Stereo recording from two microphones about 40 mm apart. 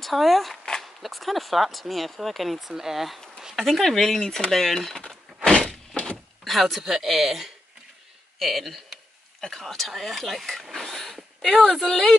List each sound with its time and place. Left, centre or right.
0.0 s speech: centre
3.5 s speech: centre
5.4 s a sound: centre
6.4 s speech: centre